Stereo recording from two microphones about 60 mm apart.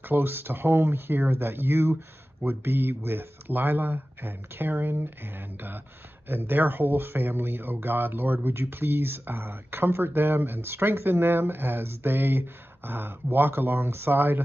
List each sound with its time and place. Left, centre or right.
0.0 s speech: right